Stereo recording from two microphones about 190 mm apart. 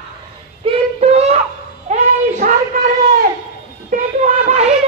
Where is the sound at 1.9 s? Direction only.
35° right (ahead or behind).